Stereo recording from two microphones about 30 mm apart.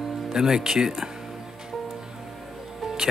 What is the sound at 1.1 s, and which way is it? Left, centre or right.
Music, centre.